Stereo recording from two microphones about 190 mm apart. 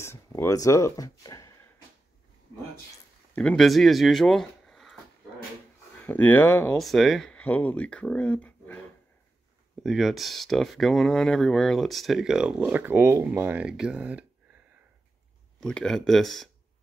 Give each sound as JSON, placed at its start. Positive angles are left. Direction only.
{"t": 0.0, "sound": "speech", "side_deg": 15}
{"t": 3.3, "sound": "speech", "side_deg": 5}
{"t": 6.0, "sound": "speech", "side_deg": 10}
{"t": 9.8, "sound": "speech", "side_deg": 0}
{"t": 15.6, "sound": "speech", "side_deg": 5}